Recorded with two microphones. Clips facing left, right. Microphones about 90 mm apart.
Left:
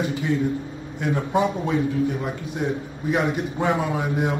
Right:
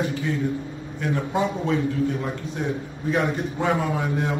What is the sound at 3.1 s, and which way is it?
A man's voice, 15° left (ahead or behind).